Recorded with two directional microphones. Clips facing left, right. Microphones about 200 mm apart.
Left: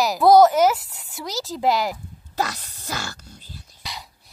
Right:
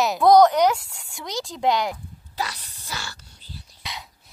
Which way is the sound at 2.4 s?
45° left (ahead or behind).